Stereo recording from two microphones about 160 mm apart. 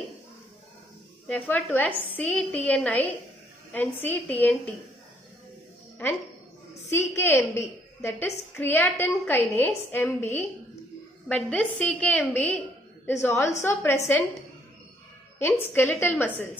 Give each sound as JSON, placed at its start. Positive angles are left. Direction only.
{"t": 1.2, "sound": "a woman's voice", "side_deg": 10}
{"t": 6.0, "sound": "a woman's voice", "side_deg": 10}
{"t": 15.3, "sound": "a woman's voice", "side_deg": 15}